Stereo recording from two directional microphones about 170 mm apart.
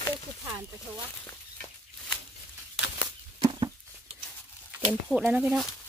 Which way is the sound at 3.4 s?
25° right (ahead or behind).